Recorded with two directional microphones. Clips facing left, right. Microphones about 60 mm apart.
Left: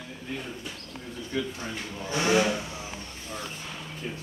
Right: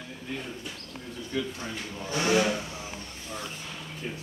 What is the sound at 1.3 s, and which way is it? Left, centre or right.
Speech, left.